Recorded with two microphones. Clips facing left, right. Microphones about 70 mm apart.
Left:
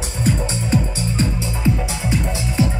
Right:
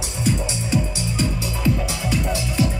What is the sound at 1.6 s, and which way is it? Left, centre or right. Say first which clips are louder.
Music: left 1 dB; left.